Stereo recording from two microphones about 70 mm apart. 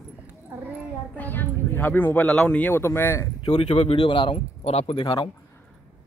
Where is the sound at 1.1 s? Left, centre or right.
Left.